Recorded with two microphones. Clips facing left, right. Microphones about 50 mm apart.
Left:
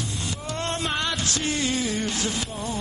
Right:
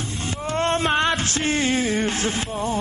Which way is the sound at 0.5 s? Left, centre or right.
Right.